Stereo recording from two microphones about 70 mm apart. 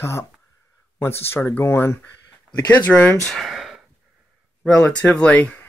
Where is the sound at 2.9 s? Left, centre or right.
Left.